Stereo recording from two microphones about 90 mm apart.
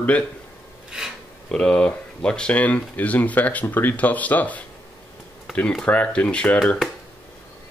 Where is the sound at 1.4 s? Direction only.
10° left (ahead or behind).